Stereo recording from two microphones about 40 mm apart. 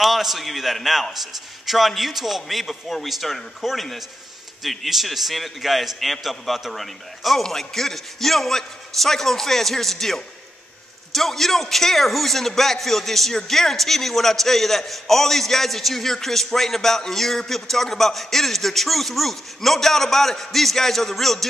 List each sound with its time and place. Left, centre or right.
0.0 s a man's voice: centre